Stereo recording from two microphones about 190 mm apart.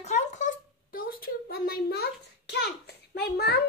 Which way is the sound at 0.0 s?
35° left (ahead or behind).